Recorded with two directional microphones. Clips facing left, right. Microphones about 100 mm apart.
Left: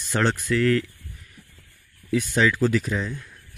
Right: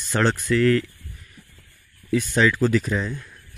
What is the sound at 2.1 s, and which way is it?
Speech, 5° left (ahead or behind).